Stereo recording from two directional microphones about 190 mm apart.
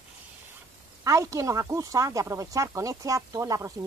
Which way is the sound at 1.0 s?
15° right (ahead or behind).